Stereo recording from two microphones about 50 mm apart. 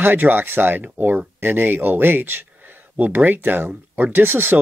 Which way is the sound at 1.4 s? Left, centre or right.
Right.